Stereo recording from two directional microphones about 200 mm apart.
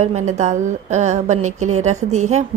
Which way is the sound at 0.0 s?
35° right (ahead or behind).